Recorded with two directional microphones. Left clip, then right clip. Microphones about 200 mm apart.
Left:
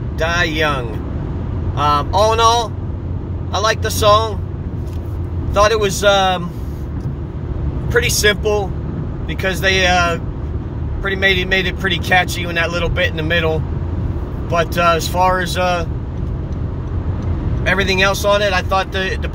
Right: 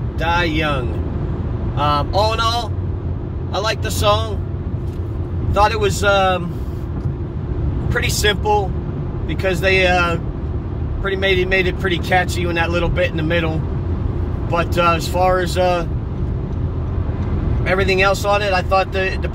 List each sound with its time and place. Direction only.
0.2 s speech: 25° left (ahead or behind)
3.5 s speech: 25° left (ahead or behind)
5.5 s speech: 30° left (ahead or behind)
7.9 s speech: 25° left (ahead or behind)
17.6 s speech: 30° left (ahead or behind)